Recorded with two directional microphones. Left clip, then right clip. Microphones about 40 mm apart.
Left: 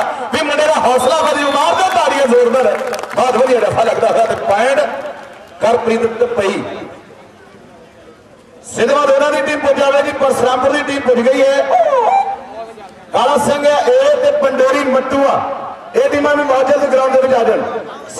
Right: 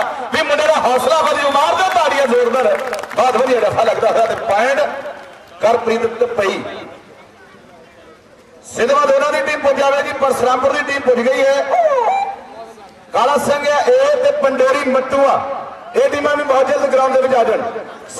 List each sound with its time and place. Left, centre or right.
0.0 s a sound: right
3.2 s a man's voice: right
8.7 s a man's voice: right